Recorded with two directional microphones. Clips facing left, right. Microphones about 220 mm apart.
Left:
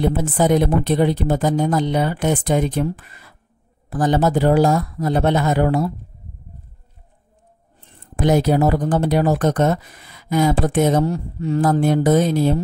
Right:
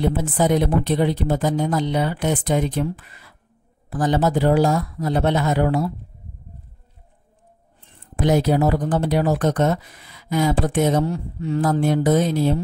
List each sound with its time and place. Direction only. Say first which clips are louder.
0.0 s speech: left 2 dB; 50° left (ahead or behind)
8.2 s speech: left 2 dB; 50° left (ahead or behind)